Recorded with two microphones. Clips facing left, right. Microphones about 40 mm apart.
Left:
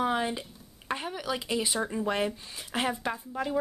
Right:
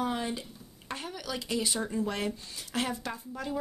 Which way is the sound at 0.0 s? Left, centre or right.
Left.